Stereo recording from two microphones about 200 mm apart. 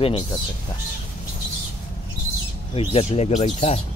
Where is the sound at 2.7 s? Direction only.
30° left (ahead or behind).